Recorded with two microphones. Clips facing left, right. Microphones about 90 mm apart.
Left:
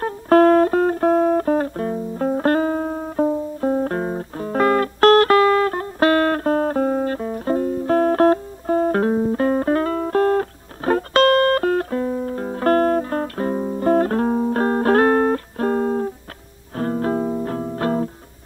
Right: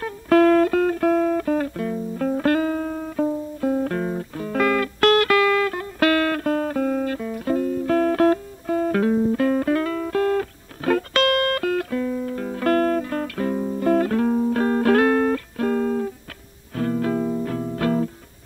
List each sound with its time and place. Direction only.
0.0 s music: 35° left (ahead or behind)